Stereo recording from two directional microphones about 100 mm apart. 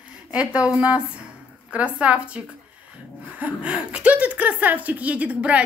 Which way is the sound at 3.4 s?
10° right (ahead or behind).